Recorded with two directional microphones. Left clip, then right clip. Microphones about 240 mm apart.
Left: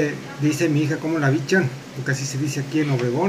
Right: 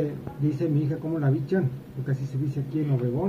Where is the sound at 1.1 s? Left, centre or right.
Centre.